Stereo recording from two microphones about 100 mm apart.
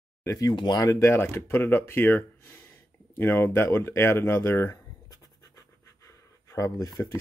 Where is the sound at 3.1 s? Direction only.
20° left (ahead or behind).